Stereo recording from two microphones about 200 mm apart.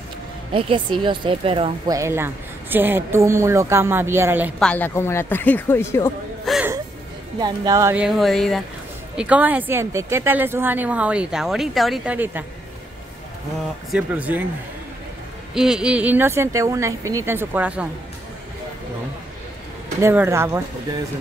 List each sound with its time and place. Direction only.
0.5 s a woman's voice: 25° right (ahead or behind)
2.0 s speech: 10° right (ahead or behind)
4.6 s speech: 5° left (ahead or behind)
6.4 s gasp: centre (ahead or behind)
7.3 s speech: 20° right (ahead or behind)
13.9 s speech: 5° right (ahead or behind)
15.5 s speech: 5° right (ahead or behind)
20.0 s speech: 15° right (ahead or behind)